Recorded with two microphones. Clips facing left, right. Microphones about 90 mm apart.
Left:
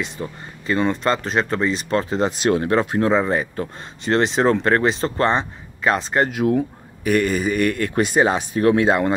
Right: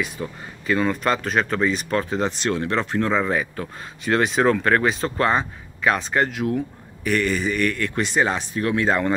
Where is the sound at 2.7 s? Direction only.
35° left (ahead or behind).